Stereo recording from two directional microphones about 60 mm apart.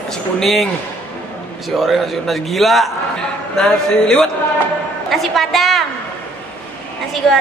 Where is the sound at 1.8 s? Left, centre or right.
Centre.